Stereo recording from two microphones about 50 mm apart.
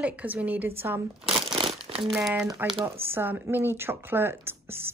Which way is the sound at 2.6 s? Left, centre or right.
Right.